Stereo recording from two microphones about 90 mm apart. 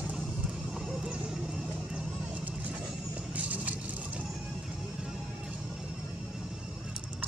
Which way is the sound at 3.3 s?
15° right (ahead or behind).